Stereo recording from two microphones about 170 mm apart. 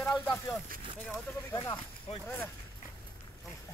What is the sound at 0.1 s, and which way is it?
Speech, 10° left (ahead or behind).